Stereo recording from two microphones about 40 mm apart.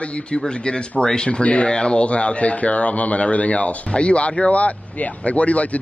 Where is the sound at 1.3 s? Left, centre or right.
Left.